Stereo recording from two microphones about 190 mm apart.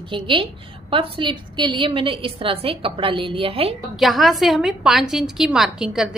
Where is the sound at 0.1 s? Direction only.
25° right (ahead or behind).